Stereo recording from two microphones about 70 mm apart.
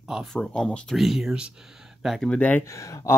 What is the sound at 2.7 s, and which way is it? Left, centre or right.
Speech, left.